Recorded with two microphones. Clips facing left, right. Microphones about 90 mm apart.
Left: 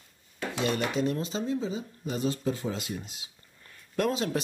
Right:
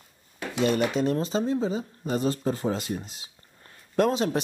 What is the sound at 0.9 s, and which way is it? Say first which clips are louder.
Speech: right 4 dB; 40° right (ahead or behind).